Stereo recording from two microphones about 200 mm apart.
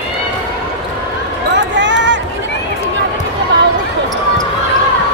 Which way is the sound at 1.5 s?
65° right (ahead or behind).